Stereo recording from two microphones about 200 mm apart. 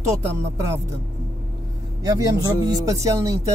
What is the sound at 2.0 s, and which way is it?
Speech, 15° right (ahead or behind).